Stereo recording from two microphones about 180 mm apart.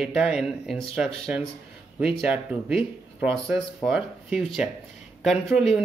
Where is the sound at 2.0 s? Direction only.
5° right (ahead or behind).